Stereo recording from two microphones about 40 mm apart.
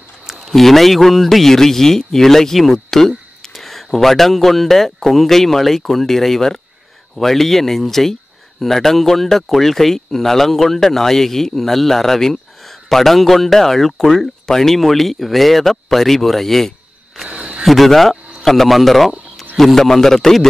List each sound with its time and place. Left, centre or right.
0.5 s a man's voice: centre
17.3 s a sound: right
17.6 s speech: centre